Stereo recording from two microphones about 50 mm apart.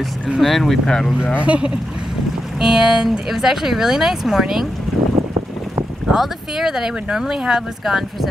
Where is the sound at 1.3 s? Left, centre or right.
Right.